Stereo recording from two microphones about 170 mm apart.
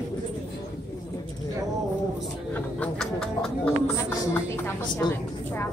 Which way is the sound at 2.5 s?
5° left (ahead or behind).